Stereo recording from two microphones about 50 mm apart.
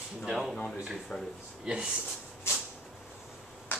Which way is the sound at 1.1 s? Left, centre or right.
Left.